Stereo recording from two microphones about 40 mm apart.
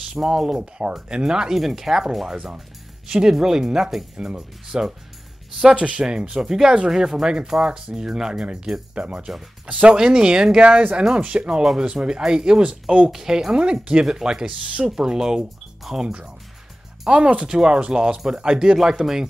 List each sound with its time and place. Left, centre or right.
0.1 s speech: centre
1.8 s speech: centre
3.1 s speech: centre
8.9 s speech: right
9.9 s speech: centre
10.6 s speech: right; by 13.6 s centre
13.6 s speech: right
14.0 s speech: centre